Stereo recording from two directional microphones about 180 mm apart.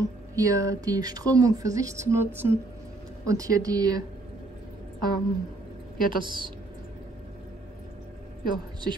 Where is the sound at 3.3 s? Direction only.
20° right (ahead or behind).